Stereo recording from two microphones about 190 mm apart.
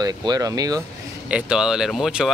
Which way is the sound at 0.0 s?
20° right (ahead or behind).